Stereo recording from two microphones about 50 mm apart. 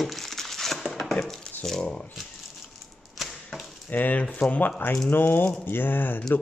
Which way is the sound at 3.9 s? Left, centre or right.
Left.